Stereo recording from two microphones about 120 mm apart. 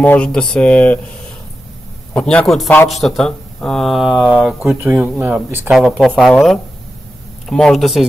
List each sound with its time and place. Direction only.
0.0 s speech: 10° left (ahead or behind)
2.1 s speech: 5° left (ahead or behind); by 5.7 s 15° right (ahead or behind)
5.7 s speech: 5° right (ahead or behind)